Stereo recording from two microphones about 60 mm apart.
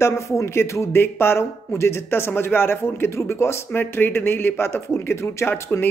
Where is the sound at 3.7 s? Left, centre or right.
Left.